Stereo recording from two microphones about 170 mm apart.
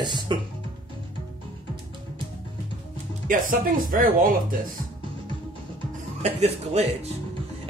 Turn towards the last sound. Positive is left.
turn(degrees=-40)  # may be behind; listen again after turning